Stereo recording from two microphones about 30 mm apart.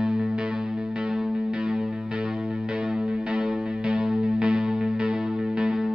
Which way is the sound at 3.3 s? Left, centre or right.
Right.